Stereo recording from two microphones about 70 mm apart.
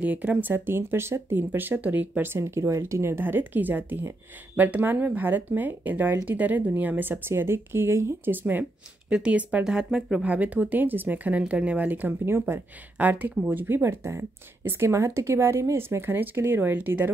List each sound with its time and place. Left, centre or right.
0.0 s speech: right
8.4 s speech: right
9.1 s speech: centre
10.2 s speech: right
12.3 s speech: right
12.9 s speech: right
13.8 s speech: right